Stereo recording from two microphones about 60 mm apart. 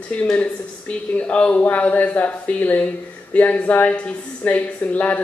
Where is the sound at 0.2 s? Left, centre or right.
Left.